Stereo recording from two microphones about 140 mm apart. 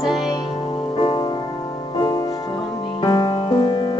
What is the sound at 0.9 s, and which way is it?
Music, 30° left (ahead or behind).